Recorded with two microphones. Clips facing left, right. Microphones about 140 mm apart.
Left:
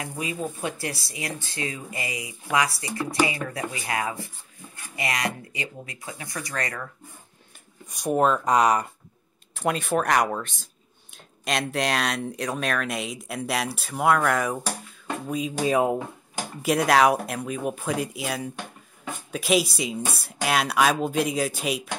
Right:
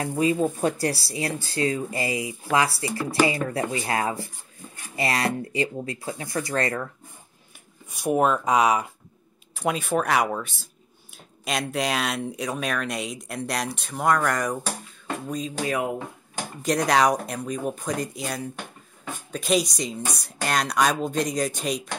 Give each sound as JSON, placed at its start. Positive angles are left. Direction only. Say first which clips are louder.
{"t": 0.6, "sound": "speech", "louder": "right 6 dB", "side_deg": -40}
{"t": 8.0, "sound": "speech", "louder": "even", "side_deg": -5}
{"t": 15.6, "sound": "speech", "louder": "left 5 dB", "side_deg": 25}
{"t": 16.6, "sound": "speech", "louder": "left 1 dB", "side_deg": 5}